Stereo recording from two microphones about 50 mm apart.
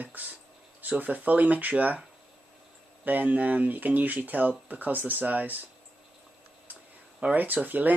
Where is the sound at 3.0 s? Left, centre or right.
Right.